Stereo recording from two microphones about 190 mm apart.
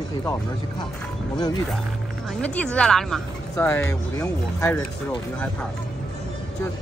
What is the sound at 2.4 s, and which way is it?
A woman's voice, 5° left (ahead or behind).